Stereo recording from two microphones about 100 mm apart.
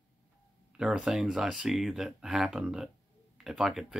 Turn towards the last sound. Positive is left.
turn(degrees=-5)  # may be behind; listen again after turning